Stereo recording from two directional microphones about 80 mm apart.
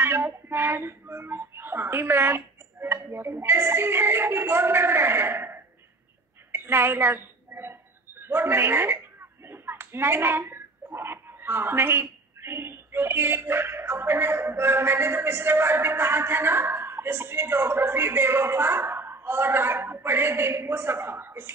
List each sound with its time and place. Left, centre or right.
0.0 s speech: right
6.5 s a sound: right
8.2 s speech: right